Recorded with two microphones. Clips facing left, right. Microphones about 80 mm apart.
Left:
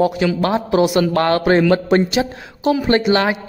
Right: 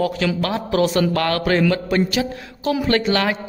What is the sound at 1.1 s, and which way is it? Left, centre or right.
A woman's voice, left.